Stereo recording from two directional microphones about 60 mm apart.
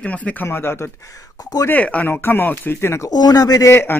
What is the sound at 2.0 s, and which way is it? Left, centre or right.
Speech, left.